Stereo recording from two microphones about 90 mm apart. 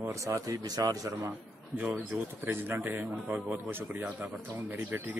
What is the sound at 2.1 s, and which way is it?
Speech, 25° right (ahead or behind).